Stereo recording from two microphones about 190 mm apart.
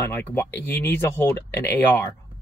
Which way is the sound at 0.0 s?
10° left (ahead or behind).